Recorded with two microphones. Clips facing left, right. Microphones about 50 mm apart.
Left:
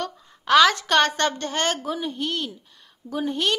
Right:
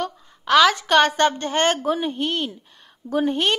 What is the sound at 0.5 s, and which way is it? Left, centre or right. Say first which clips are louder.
Speech: right 1 dB; centre.